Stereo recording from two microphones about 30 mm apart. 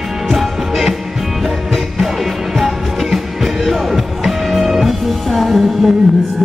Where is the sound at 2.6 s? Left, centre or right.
Centre.